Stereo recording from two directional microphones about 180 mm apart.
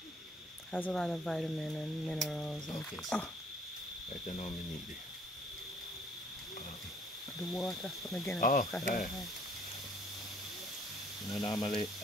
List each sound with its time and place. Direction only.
0.7 s speech: 5° left (ahead or behind)
4.3 s speech: 40° left (ahead or behind)
7.3 s speech: centre (ahead or behind)
8.4 s speech: 50° left (ahead or behind)
11.2 s speech: 25° left (ahead or behind)